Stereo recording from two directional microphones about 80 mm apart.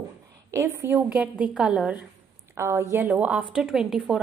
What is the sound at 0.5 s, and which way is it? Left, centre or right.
Speech, right.